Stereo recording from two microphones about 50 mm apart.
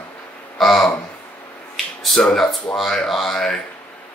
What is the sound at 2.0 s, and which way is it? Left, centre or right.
Speech, centre.